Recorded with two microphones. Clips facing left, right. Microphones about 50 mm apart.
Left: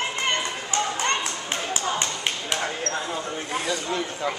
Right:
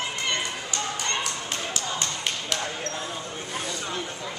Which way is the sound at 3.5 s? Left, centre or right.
Left.